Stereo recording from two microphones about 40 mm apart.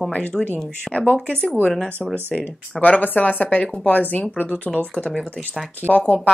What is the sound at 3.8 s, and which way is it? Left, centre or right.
Speech, left.